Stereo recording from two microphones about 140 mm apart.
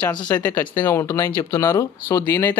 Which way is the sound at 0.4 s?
15° left (ahead or behind).